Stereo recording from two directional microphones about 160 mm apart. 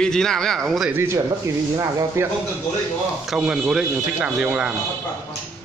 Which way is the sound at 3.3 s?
5° right (ahead or behind).